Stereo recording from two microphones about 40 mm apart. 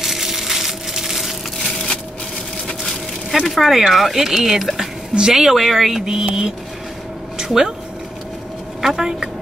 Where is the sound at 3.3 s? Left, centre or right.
Centre.